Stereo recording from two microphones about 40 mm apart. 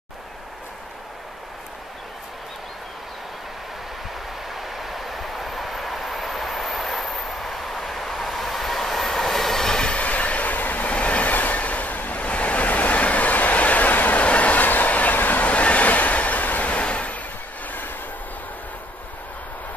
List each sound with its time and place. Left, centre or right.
4.5 s train: centre
9.9 s train: left
14.2 s train: left
16.8 s a sound: left
17.6 s train: left